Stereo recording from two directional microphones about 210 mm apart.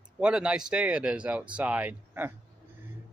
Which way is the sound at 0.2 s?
5° right (ahead or behind).